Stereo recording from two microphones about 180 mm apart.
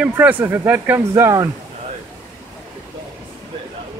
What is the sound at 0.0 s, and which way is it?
Speech, 10° right (ahead or behind).